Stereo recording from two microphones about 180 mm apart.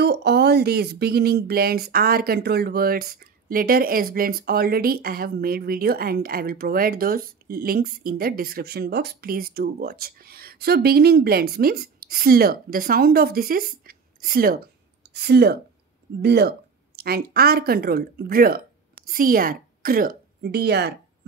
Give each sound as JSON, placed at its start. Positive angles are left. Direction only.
{"t": 0.0, "sound": "speech", "side_deg": -65}